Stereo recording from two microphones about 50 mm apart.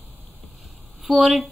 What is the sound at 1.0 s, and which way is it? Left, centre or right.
Speech, centre.